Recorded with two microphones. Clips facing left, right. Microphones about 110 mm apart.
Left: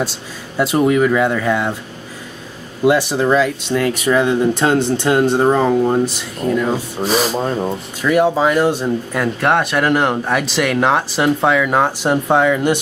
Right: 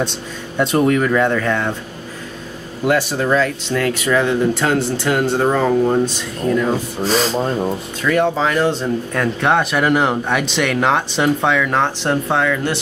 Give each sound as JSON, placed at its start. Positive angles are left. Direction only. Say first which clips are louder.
{"t": 0.0, "sound": "speech", "louder": "even", "side_deg": 5}
{"t": 2.8, "sound": "speech", "louder": "left 3 dB", "side_deg": 10}